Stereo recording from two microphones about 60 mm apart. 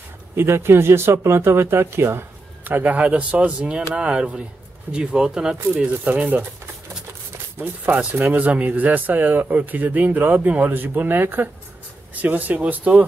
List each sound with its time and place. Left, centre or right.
0.4 s speech: right; by 5.6 s centre
5.8 s speech: right
7.5 s speech: right